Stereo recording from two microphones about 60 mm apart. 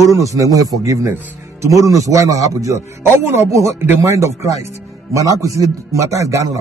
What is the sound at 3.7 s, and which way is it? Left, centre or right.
Speech, right.